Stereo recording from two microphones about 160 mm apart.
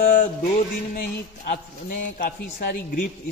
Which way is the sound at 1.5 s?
70° left (ahead or behind).